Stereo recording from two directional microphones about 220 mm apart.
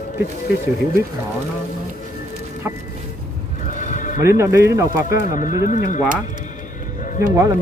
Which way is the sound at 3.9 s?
35° left (ahead or behind).